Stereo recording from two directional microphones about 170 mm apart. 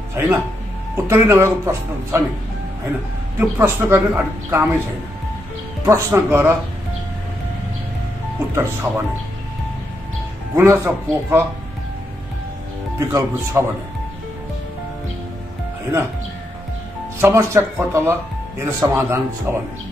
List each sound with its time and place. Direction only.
0.1 s speech: 15° right (ahead or behind)
3.3 s speech: 15° right (ahead or behind)
5.9 s speech: 15° right (ahead or behind)
8.5 s speech: 15° right (ahead or behind)
10.5 s speech: 15° right (ahead or behind)
13.1 s speech: 15° right (ahead or behind)
17.2 s speech: 15° right (ahead or behind)